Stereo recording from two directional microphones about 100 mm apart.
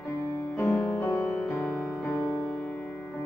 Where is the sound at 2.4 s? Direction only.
15° left (ahead or behind).